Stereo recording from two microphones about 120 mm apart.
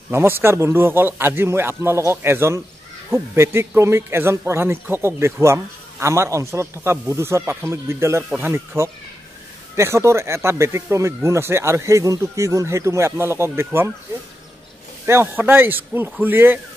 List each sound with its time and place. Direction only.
0.1 s speech: 20° right (ahead or behind)
15.0 s a man's voice: 20° right (ahead or behind)